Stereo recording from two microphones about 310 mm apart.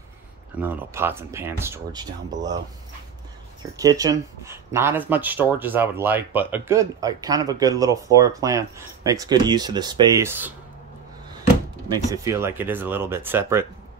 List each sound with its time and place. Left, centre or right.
0.6 s speech: centre
3.7 s speech: centre
11.9 s speech: centre